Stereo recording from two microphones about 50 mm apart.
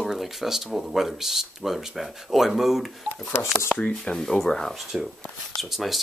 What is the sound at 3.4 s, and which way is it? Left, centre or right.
Speech, left.